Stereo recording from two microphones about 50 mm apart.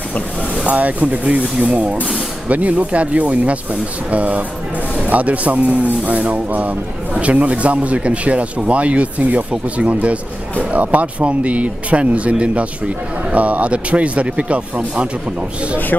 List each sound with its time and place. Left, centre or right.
0.7 s speech: right